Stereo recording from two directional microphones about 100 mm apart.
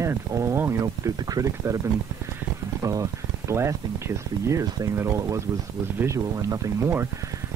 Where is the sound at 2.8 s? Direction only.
30° right (ahead or behind).